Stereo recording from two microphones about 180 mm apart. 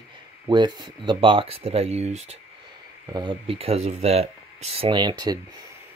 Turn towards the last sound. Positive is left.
turn(degrees=-25)  # may be behind; listen again after turning